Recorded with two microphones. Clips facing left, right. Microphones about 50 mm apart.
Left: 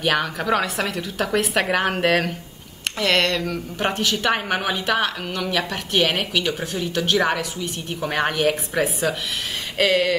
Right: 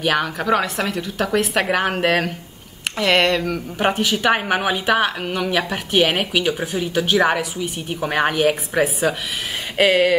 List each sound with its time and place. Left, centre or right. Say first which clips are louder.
0.0 s a woman's voice: right 2 dB; centre